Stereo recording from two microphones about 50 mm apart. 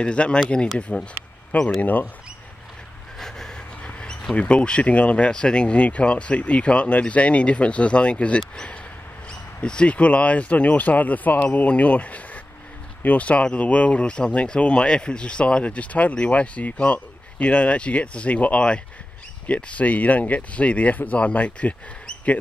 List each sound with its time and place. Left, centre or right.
0.0 s speech: left
1.8 s speech: left
3.2 s a sound: centre
3.8 s speech: centre
9.6 s speech: left